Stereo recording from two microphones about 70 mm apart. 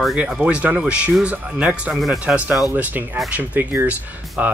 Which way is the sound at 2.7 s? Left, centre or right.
Right.